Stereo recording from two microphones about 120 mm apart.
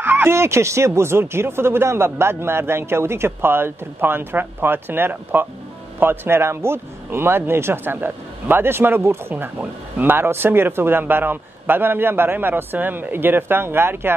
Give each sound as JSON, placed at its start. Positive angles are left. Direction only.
{"t": 0.0, "sound": "speech", "side_deg": -15}